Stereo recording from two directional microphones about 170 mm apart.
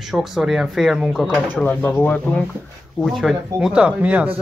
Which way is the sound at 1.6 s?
10° left (ahead or behind).